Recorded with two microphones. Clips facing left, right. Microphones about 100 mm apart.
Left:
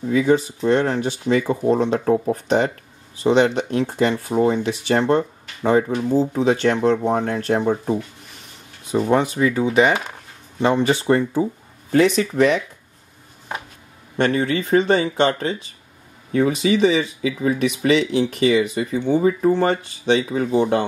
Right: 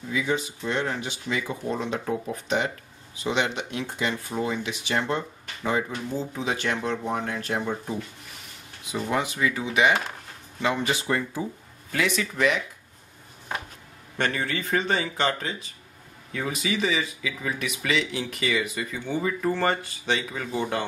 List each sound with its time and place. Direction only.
0.1 s speech: 45° left (ahead or behind)
14.1 s speech: 20° left (ahead or behind)
16.3 s speech: 35° left (ahead or behind)